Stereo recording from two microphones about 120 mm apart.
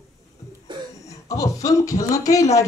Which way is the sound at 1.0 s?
30° left (ahead or behind).